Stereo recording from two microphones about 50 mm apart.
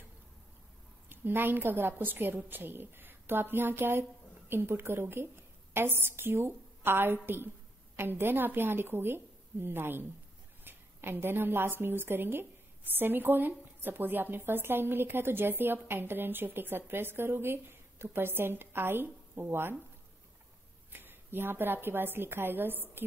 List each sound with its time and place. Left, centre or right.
1.0 s a woman's voice: right
20.9 s a woman's voice: right